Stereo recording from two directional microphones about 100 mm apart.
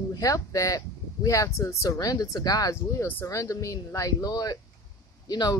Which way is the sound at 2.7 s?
25° left (ahead or behind).